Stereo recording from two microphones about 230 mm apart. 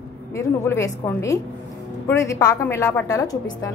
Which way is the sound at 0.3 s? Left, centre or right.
Centre.